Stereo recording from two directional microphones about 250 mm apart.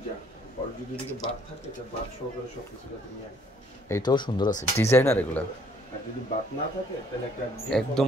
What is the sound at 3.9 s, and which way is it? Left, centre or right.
Speech, centre.